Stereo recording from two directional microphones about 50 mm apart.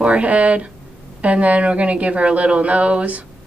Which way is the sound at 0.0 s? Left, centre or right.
Right.